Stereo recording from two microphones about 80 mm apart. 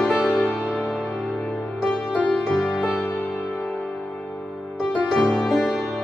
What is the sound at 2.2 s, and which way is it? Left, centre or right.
Music, centre.